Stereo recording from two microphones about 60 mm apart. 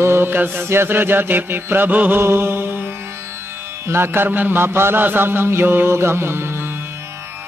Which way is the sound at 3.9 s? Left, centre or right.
Right.